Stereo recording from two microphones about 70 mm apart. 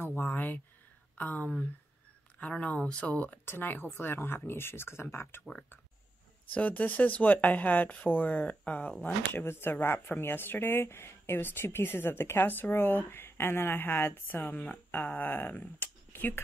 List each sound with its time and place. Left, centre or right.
0.0 s a sound: left
1.1 s speech: left
6.5 s speech: left